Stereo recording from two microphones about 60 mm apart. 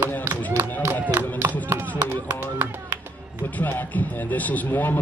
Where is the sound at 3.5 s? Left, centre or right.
Left.